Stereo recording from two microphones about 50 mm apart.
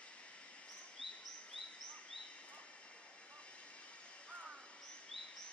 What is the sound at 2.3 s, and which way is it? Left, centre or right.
Vehicle, left.